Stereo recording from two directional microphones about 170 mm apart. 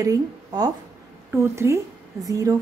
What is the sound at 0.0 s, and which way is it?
A woman's voice, 20° right (ahead or behind).